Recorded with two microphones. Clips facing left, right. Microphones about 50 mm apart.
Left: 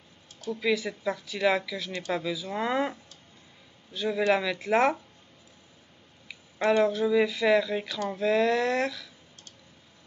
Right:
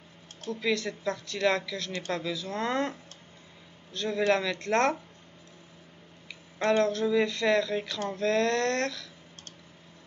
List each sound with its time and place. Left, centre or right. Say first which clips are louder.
0.5 s speech: left 2 dB; centre
1.9 s speech: left 1 dB; centre
2.1 s a man's voice: left 3 dB; centre
6.2 s speech: left 2 dB; centre